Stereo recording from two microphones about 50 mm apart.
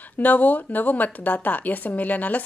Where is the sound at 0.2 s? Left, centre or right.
Left.